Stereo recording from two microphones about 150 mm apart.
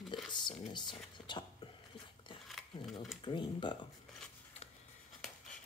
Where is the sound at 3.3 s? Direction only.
30° left (ahead or behind).